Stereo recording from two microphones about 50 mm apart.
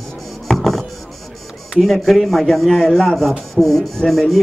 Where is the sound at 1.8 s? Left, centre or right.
Centre.